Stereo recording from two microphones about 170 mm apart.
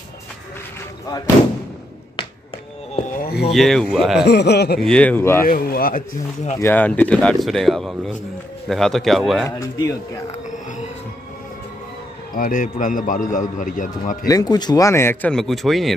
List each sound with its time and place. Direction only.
3.2 s a sound: 65° left (ahead or behind)
3.5 s speech: centre (ahead or behind)
4.3 s speech: 75° left (ahead or behind)
4.7 s speech: 5° left (ahead or behind)
5.4 s speech: 60° left (ahead or behind)
6.6 s speech: 10° left (ahead or behind)
9.5 s speech: 15° left (ahead or behind)
12.4 s a man's voice: 55° left (ahead or behind)
14.2 s speech: 25° left (ahead or behind)
15.3 s speech: centre (ahead or behind)